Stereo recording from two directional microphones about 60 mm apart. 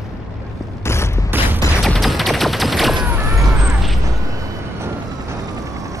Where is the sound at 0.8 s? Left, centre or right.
Left.